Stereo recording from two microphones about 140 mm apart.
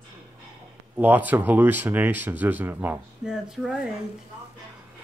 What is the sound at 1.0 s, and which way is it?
Speech, 10° right (ahead or behind).